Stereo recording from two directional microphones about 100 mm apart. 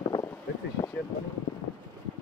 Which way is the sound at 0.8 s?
65° left (ahead or behind).